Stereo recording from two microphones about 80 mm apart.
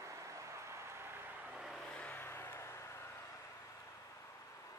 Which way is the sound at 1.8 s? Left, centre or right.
Centre.